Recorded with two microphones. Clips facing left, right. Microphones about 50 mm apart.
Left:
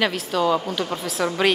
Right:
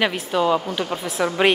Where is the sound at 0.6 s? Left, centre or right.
Centre.